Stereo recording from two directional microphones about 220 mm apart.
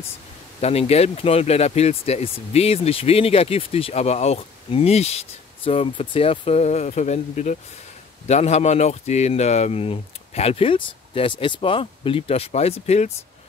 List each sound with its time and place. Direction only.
0.6 s speech: 30° left (ahead or behind)